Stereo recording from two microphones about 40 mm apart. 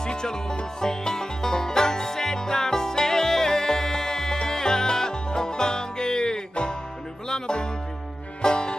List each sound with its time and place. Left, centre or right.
0.0 s music: centre